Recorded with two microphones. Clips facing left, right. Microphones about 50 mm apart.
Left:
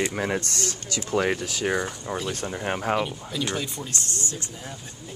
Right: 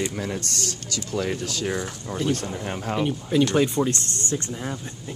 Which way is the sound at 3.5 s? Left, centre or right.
Right.